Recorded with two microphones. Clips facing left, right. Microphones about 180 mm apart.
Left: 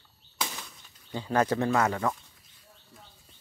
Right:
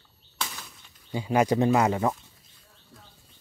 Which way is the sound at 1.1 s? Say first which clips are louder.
Right 3 dB; 10° right (ahead or behind).